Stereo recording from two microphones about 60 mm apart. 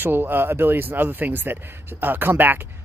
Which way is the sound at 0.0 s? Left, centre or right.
Right.